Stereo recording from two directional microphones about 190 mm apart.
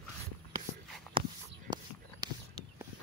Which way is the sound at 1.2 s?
25° right (ahead or behind).